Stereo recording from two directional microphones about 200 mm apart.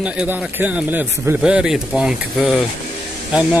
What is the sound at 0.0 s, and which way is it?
Speech, 5° right (ahead or behind).